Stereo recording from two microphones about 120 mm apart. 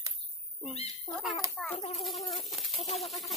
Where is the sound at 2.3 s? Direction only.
Centre (ahead or behind).